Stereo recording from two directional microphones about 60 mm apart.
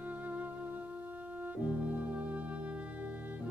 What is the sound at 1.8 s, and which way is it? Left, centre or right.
Music, right.